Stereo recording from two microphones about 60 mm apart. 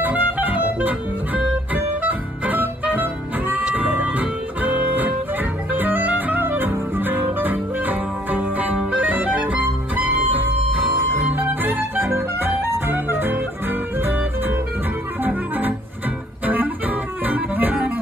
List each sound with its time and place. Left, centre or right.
0.0 s music: right
15.2 s music: right
17.3 s music: right